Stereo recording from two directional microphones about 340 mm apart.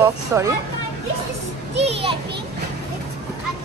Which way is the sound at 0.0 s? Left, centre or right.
Centre.